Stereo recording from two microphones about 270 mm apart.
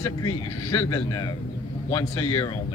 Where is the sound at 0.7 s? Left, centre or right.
Centre.